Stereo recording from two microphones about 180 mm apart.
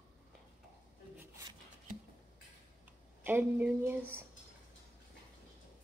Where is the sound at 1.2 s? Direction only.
20° right (ahead or behind).